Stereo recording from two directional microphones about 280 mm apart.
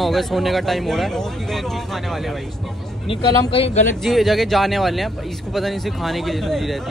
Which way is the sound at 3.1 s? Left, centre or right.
Centre.